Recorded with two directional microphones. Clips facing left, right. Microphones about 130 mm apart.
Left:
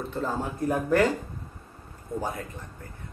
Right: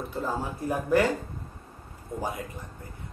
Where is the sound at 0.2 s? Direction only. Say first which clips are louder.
Left 2 dB; 10° right (ahead or behind).